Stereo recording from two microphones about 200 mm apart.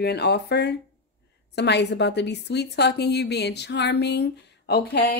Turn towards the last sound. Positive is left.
turn(degrees=55)  # may be behind; listen again after turning